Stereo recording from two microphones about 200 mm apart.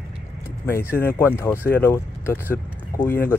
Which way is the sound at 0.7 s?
10° left (ahead or behind).